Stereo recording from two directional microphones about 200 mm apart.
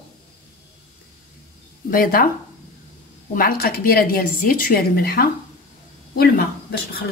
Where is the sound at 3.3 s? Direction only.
45° left (ahead or behind).